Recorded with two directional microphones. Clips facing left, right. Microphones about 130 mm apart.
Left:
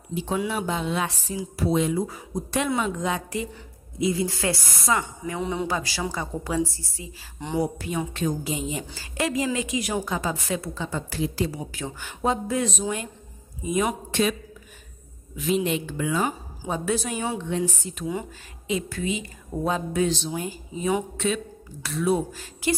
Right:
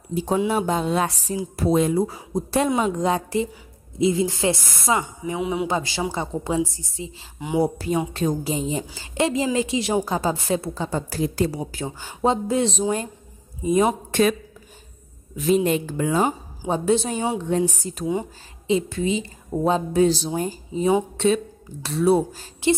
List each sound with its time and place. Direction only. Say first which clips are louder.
0.1 s speech: right 5 dB; 40° right (ahead or behind)
4.0 s a woman's voice: right 4 dB; 20° right (ahead or behind)
5.4 s speech: right 3 dB; 5° right (ahead or behind)
5.7 s a woman's voice: right 3 dB; 25° right (ahead or behind)
7.5 s a woman's voice: right 5 dB; 30° right (ahead or behind)
11.6 s a woman's voice: right 3 dB; 30° right (ahead or behind)
15.3 s speech: right 5 dB; 40° right (ahead or behind)
16.3 s a woman's voice: right 5 dB; 25° right (ahead or behind)
17.4 s speech: right 5 dB; 40° right (ahead or behind)
18.7 s a woman's voice: right 6 dB; 25° right (ahead or behind)